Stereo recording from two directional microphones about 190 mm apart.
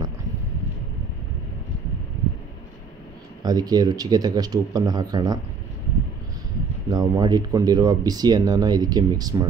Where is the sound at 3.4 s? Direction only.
20° right (ahead or behind).